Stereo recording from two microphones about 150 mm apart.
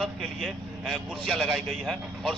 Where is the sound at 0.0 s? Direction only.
Centre (ahead or behind).